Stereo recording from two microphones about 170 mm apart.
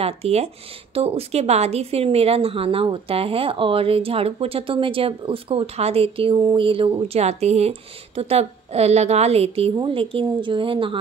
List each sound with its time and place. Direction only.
0.0 s speech: 35° right (ahead or behind)